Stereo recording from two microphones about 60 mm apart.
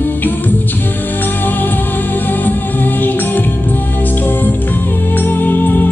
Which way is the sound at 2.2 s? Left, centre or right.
Left.